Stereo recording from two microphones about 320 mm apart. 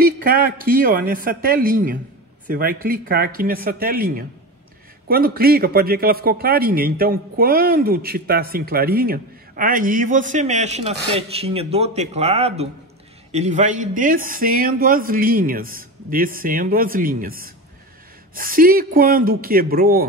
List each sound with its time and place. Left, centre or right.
0.0 s a man's voice: right